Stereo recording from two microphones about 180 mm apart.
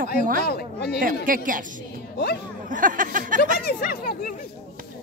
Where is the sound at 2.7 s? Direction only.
50° right (ahead or behind).